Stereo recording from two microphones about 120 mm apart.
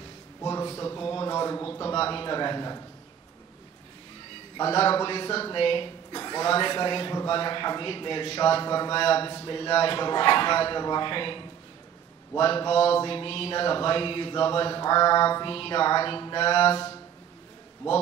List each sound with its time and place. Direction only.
0.4 s a sound: 25° left (ahead or behind)
1.9 s a man's voice: 45° left (ahead or behind)
4.6 s mantra: 50° left (ahead or behind)
15.5 s mantra: 50° left (ahead or behind)